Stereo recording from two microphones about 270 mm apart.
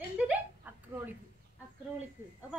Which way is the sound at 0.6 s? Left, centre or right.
Centre.